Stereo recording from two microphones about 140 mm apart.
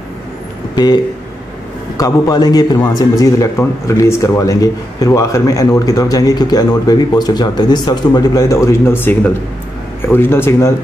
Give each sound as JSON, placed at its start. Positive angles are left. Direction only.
{"t": 0.7, "sound": "a man's voice", "side_deg": 30}